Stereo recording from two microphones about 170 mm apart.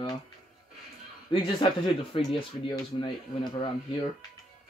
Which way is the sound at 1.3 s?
30° left (ahead or behind).